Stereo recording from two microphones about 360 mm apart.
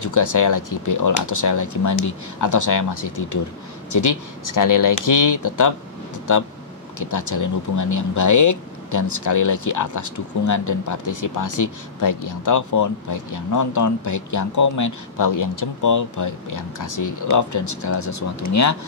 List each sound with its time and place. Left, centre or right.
0.0 s speech: left
7.0 s speech: left